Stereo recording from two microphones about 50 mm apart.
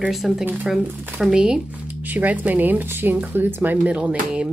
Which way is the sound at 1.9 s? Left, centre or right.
Right.